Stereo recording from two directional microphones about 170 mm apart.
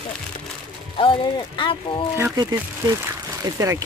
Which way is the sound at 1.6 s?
30° left (ahead or behind).